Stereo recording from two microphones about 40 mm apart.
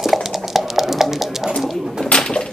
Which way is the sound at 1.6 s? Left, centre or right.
Centre.